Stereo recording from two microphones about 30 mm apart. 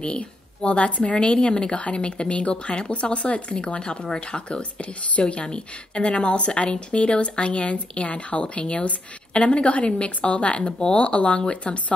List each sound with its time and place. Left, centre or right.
0.6 s a woman's voice: left
3.5 s a woman's voice: left
10.8 s a woman's voice: left